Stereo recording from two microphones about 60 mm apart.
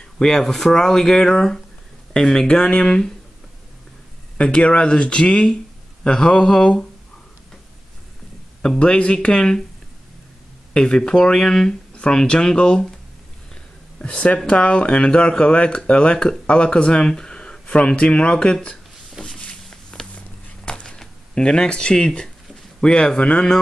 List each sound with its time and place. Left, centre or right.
0.0 s speech: centre
4.4 s speech: centre
8.6 s speech: centre
10.7 s speech: centre
13.9 s speech: centre
19.2 s a sound: centre
22.8 s speech: centre